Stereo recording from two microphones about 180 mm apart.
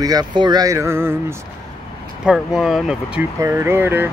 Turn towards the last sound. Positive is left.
turn(degrees=-10)  # may be behind; listen again after turning